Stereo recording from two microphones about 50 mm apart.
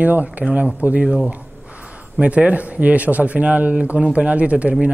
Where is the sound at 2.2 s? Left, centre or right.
Right.